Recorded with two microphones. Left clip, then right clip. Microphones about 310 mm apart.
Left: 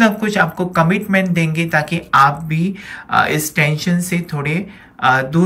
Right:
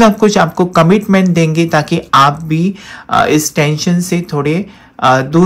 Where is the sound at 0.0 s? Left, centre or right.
Centre.